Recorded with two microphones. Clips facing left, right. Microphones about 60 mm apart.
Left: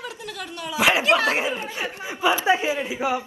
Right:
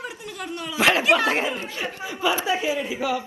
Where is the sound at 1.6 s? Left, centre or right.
Left.